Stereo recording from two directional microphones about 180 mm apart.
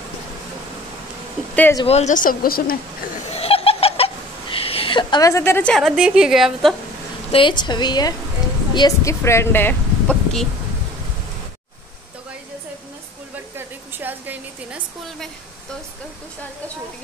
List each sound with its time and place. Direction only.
1.5 s speech: 10° left (ahead or behind)
1.9 s speech: 40° left (ahead or behind)
3.3 s laughter: 35° left (ahead or behind); by 6.7 s centre (ahead or behind)
7.3 s a woman's voice: 25° left (ahead or behind); by 10.5 s 5° left (ahead or behind)
13.9 s a sound: 10° right (ahead or behind)